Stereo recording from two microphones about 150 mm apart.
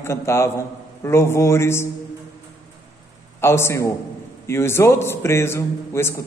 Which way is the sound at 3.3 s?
15° left (ahead or behind).